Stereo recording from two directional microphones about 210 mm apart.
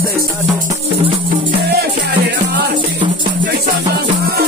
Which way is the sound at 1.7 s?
50° right (ahead or behind).